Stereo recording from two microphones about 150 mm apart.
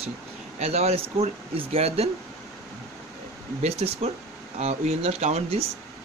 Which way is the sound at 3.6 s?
45° right (ahead or behind).